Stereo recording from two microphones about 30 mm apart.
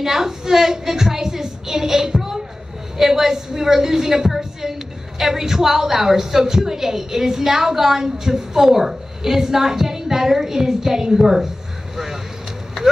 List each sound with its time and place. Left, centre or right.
0.0 s a woman's voice: centre
4.4 s a sound: centre
5.2 s a woman's voice: centre